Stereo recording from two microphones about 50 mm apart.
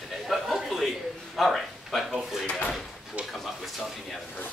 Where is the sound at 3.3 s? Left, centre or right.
Centre.